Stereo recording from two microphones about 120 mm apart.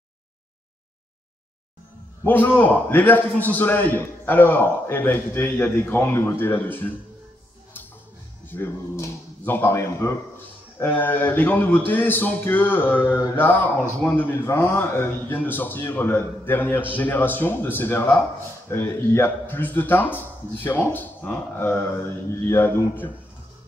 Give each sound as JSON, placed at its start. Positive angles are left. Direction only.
{"t": 2.2, "sound": "a man's voice", "side_deg": 15}
{"t": 8.5, "sound": "a man's voice", "side_deg": 20}